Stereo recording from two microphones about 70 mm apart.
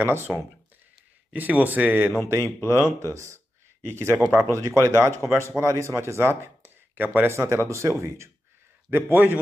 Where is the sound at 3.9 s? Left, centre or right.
Right.